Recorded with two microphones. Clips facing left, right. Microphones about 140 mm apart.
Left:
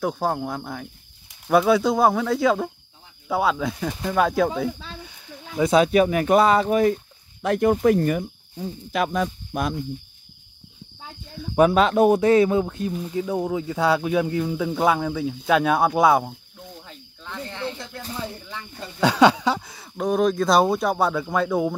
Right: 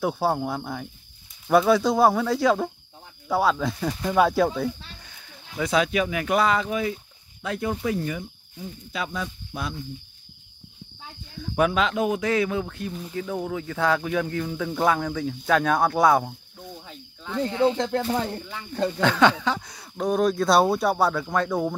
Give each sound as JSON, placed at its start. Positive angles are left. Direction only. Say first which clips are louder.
{"t": 0.0, "sound": "speech", "louder": "even", "side_deg": -5}
{"t": 5.6, "sound": "speech", "louder": "left 5 dB", "side_deg": 25}
{"t": 5.9, "sound": "speech", "louder": "left 7 dB", "side_deg": 40}
{"t": 11.5, "sound": "speech", "louder": "left 6 dB", "side_deg": 35}
{"t": 16.8, "sound": "snake", "louder": "right 2 dB", "side_deg": -5}
{"t": 17.7, "sound": "speech", "louder": "right 12 dB", "side_deg": -90}
{"t": 18.9, "sound": "speech", "louder": "left 4 dB", "side_deg": 10}